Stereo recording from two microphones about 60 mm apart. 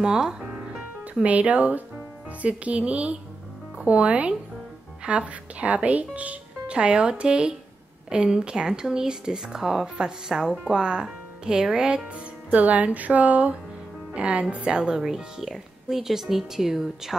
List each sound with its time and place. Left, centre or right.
0.0 s speech: centre
0.7 s music: centre
1.3 s speech: right
12.5 s speech: right; by 17.1 s centre